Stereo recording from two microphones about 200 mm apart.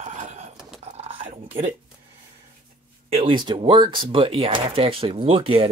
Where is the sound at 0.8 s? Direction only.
30° right (ahead or behind).